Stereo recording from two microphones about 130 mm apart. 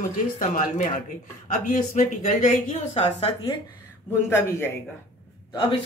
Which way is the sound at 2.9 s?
55° left (ahead or behind).